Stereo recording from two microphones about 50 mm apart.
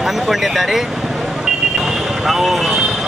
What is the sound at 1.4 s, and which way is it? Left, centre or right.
Vehicle, centre.